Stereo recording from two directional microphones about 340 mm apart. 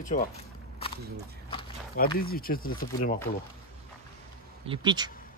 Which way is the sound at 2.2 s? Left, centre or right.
Left.